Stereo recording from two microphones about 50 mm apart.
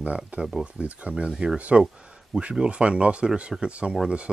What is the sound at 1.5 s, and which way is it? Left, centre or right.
Speech, right.